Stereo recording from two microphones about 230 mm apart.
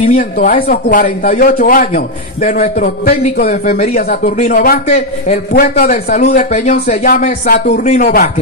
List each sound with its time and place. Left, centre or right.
0.1 s a man's voice: left